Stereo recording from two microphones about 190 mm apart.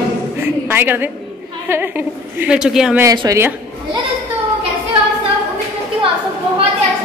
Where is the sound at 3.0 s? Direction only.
20° right (ahead or behind).